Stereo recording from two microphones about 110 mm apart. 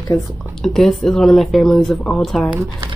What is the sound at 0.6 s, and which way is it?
Speech, 5° left (ahead or behind).